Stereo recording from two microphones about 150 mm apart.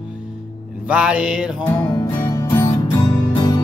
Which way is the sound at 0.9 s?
5° right (ahead or behind).